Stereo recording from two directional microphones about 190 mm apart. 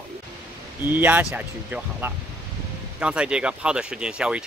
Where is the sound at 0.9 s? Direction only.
10° right (ahead or behind).